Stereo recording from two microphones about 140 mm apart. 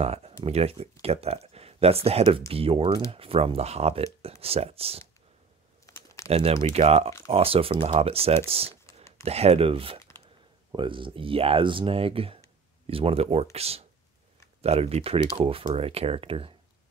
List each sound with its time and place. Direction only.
0.0 s speech: 50° right (ahead or behind)
6.2 s speech: 45° right (ahead or behind)